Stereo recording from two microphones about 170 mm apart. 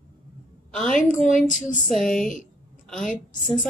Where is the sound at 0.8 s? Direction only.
50° left (ahead or behind).